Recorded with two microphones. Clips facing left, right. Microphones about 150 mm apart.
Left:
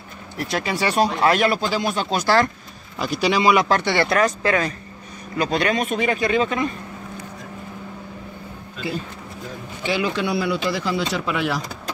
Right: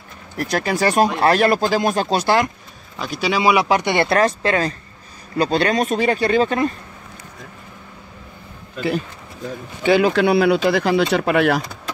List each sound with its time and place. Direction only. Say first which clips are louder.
0.4 s speech: right 4 dB; 45° right (ahead or behind)
2.2 s speech: left 2 dB; 15° right (ahead or behind)
3.0 s speech: left 1 dB; centre (ahead or behind); by 4.1 s 20° right (ahead or behind)
4.1 s speech: right 2 dB; 30° right (ahead or behind)
9.8 s speech: right 8 dB; 50° right (ahead or behind)
10.1 s speech: right 7 dB; 70° right (ahead or behind)